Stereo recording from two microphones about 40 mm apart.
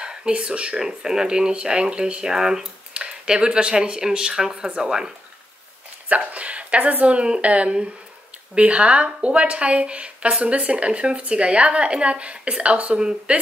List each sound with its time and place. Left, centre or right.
0.0 s speech: right
0.7 s speech: centre
2.2 s speech: centre
2.9 s speech: right
6.0 s speech: right